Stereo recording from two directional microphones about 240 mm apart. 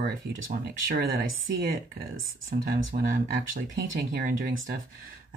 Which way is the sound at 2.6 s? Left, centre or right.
Right.